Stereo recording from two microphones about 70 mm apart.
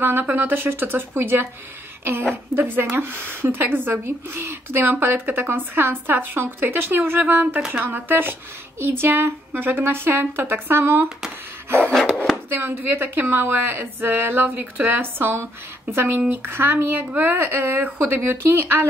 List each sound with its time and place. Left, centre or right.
0.0 s speech: right
2.5 s speech: right
12.5 s speech: right